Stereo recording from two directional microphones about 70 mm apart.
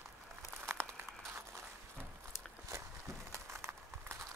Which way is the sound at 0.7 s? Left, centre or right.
Right.